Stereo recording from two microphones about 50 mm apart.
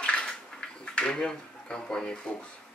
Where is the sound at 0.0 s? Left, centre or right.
Left.